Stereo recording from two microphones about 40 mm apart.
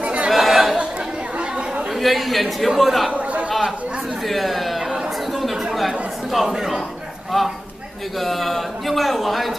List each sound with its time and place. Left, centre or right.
0.0 s chatter: right
0.3 s chatter: centre
2.0 s a man's voice: centre
3.1 s a sound: right
4.3 s speech: centre
5.3 s chatter: centre
7.3 s a man's voice: centre